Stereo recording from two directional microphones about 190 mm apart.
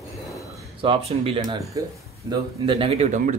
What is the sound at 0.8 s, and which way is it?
A man's voice, 30° right (ahead or behind).